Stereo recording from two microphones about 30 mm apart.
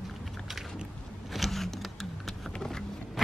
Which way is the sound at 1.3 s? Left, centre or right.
Centre.